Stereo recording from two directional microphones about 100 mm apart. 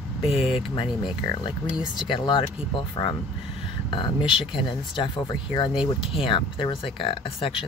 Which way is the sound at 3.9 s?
55° left (ahead or behind).